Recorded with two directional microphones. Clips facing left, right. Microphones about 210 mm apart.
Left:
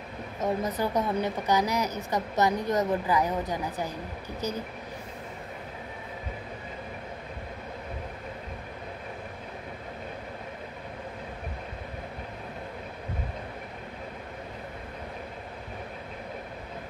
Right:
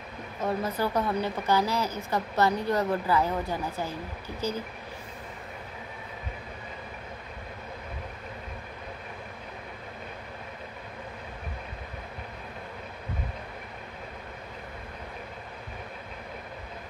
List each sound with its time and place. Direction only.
0.4 s a woman's voice: 15° left (ahead or behind)